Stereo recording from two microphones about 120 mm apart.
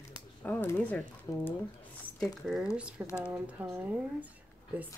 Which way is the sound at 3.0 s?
15° right (ahead or behind).